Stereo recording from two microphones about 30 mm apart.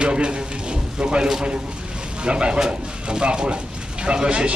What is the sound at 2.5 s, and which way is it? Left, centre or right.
Speech, right.